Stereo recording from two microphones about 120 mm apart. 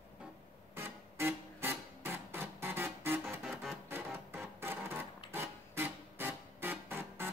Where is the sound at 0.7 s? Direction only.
20° right (ahead or behind).